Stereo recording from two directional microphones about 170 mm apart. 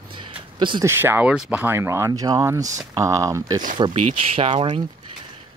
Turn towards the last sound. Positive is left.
turn(degrees=-25)  # may be behind; listen again after turning